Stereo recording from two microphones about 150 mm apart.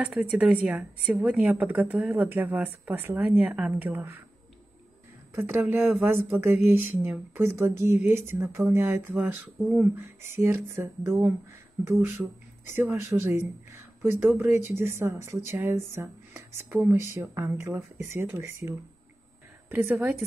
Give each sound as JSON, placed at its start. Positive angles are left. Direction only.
{"t": 0.0, "sound": "speech", "side_deg": -10}
{"t": 5.3, "sound": "speech", "side_deg": -15}